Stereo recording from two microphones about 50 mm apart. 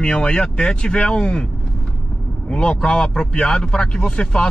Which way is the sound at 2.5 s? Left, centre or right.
Left.